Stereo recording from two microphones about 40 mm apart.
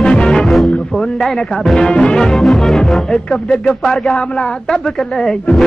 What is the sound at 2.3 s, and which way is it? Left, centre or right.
Music, centre.